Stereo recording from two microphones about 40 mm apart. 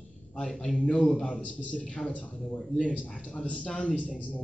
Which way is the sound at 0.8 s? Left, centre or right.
Centre.